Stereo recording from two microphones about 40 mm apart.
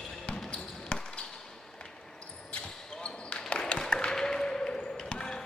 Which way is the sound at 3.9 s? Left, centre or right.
Centre.